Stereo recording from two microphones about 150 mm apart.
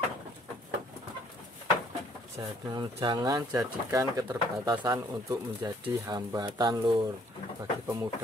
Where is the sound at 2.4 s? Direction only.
25° right (ahead or behind).